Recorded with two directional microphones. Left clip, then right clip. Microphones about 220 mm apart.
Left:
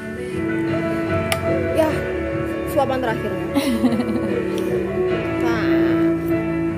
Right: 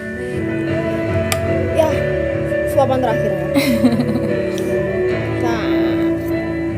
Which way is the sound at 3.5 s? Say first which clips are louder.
Right 3 dB; 15° right (ahead or behind).